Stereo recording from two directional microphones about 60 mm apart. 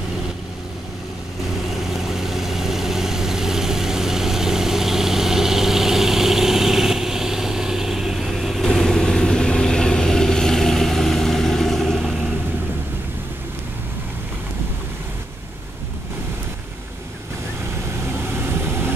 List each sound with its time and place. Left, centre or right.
1.7 s vehicle: centre
18.0 s vehicle: right